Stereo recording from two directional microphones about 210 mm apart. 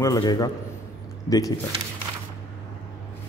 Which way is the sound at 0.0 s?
20° left (ahead or behind).